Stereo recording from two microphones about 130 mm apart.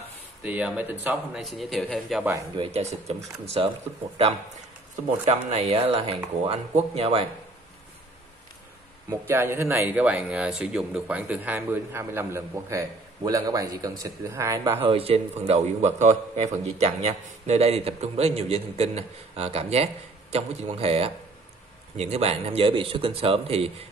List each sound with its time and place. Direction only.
0.4 s a man's voice: 10° right (ahead or behind)
2.5 s speech: 50° right (ahead or behind)
3.6 s a man's voice: 45° right (ahead or behind)
5.2 s a man's voice: 55° right (ahead or behind)
9.3 s speech: 20° right (ahead or behind)
14.9 s a man's voice: 50° right (ahead or behind)